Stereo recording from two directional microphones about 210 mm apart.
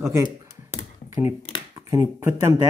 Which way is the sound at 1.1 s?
10° right (ahead or behind).